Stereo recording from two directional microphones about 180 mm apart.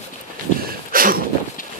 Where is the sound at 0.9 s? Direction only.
50° right (ahead or behind).